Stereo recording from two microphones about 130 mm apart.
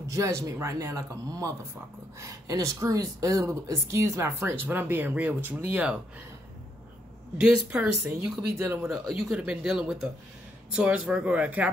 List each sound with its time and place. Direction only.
0.1 s speech: 25° right (ahead or behind)
7.3 s speech: 10° right (ahead or behind)
9.3 s speech: 5° right (ahead or behind)